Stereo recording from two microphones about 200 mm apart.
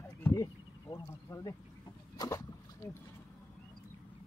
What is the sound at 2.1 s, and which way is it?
Rowboat, 15° left (ahead or behind).